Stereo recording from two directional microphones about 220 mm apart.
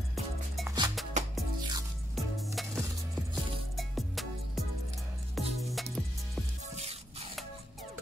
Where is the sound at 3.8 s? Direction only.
Centre (ahead or behind).